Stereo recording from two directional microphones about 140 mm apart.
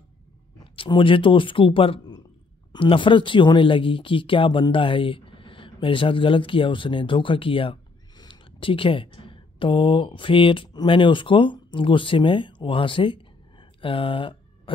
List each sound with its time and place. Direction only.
0.7 s speech: 35° left (ahead or behind)